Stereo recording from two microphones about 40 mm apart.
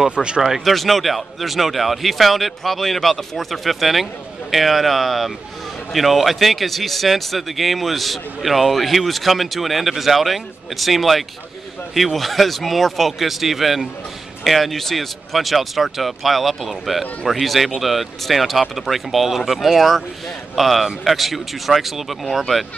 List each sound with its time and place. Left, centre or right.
0.1 s speech: right
0.4 s speech: centre